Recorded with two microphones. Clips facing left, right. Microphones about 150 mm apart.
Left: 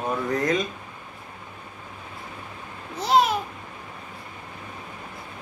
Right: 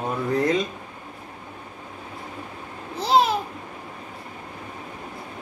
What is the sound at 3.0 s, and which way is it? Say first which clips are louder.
Babbling: right 1 dB; 30° right (ahead or behind).